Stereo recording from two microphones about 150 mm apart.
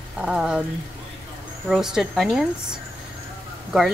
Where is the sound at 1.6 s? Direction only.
5° right (ahead or behind).